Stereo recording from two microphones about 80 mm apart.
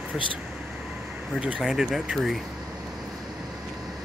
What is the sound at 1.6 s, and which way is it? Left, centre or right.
Speech, centre.